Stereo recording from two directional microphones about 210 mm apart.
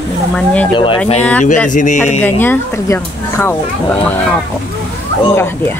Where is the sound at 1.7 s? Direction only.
35° left (ahead or behind).